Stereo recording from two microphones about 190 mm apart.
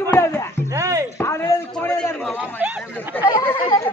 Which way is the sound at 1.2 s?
15° left (ahead or behind).